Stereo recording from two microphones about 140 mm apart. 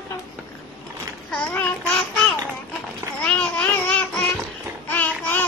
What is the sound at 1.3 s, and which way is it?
Child singing, 10° left (ahead or behind).